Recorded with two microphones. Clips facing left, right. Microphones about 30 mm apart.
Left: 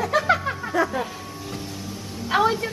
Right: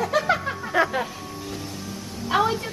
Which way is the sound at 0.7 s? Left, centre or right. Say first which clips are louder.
Right 2 dB; right.